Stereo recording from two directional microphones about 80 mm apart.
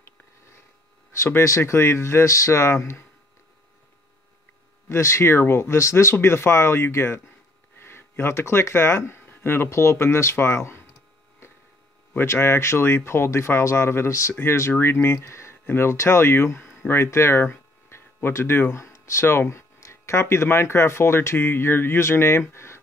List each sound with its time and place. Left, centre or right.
1.2 s speech: left
4.8 s speech: left
12.1 s speech: left
22.5 s a sound: left